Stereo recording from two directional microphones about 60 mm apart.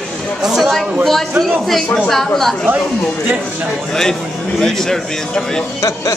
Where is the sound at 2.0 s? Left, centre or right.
Centre.